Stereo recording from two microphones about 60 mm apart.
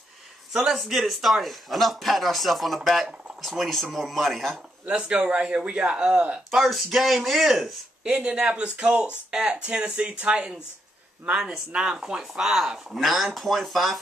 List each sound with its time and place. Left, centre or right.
0.5 s speech: centre
4.8 s speech: centre
6.5 s speech: centre
8.1 s speech: centre
12.2 s speech: centre